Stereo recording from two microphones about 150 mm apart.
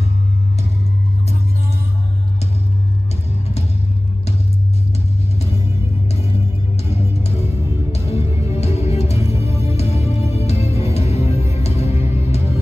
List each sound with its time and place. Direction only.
6.9 s music: 45° left (ahead or behind)